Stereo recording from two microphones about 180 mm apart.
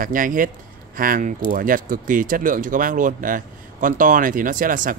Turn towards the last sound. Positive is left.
turn(degrees=-50)  # may be behind; listen again after turning